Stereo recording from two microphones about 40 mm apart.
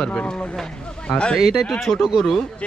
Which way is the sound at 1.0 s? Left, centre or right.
Left.